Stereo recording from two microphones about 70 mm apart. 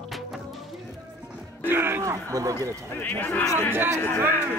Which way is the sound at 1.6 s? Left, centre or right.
Right.